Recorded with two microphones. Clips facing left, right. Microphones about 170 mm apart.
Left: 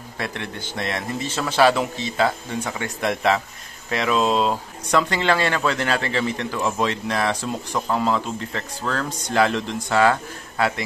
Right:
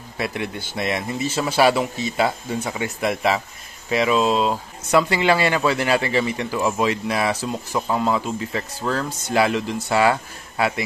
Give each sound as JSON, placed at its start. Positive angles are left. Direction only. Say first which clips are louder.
{"t": 0.2, "sound": "speech", "louder": "right 3 dB", "side_deg": -10}